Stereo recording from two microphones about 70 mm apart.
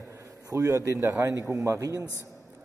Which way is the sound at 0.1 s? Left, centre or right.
Right.